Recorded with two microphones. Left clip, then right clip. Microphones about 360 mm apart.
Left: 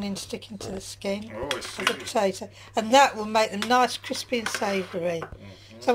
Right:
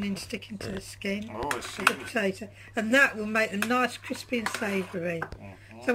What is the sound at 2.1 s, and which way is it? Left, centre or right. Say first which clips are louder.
Speech: left 5 dB; centre.